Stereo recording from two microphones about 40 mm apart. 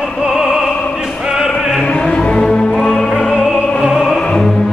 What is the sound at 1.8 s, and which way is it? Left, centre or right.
Music, left.